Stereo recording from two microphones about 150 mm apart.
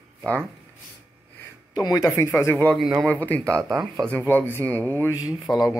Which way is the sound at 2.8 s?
Centre (ahead or behind).